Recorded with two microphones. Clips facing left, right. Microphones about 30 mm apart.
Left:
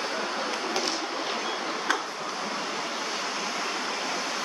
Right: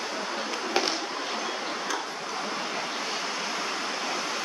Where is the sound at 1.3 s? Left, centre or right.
Centre.